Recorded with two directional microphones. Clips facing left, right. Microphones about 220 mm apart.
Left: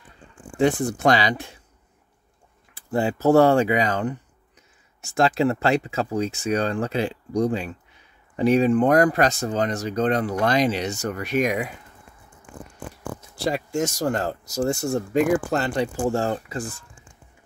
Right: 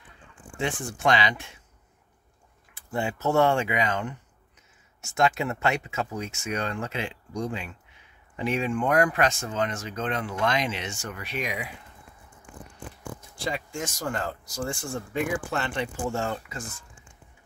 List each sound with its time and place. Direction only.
0.6 s speech: 40° left (ahead or behind)
2.7 s speech: 35° left (ahead or behind)
13.4 s speech: 40° left (ahead or behind)